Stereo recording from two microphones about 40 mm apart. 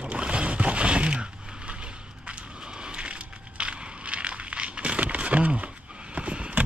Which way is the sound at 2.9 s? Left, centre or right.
Right.